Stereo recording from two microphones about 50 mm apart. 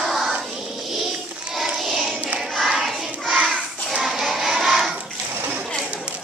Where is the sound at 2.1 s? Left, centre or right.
Right.